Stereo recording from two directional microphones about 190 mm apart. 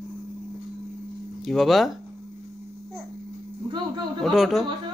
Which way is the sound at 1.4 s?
Centre (ahead or behind).